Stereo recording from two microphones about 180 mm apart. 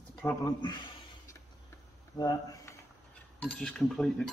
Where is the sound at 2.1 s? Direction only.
20° left (ahead or behind).